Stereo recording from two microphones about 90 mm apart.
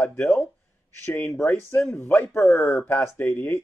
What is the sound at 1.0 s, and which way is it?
Speech, 30° left (ahead or behind).